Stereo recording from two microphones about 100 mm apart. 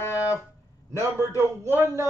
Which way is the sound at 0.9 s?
30° right (ahead or behind).